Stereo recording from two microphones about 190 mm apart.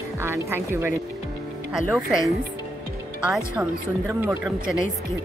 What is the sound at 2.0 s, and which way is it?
A woman's voice, centre (ahead or behind).